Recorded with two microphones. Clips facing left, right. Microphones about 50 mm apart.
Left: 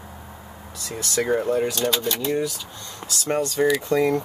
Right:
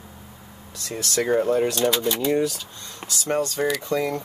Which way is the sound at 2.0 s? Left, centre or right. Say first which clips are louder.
Right 2 dB; centre.